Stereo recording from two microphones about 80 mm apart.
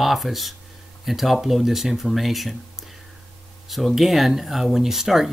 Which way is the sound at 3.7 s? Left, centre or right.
Centre.